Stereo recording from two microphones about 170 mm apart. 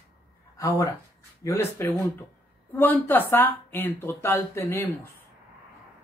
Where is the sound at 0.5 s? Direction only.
20° left (ahead or behind).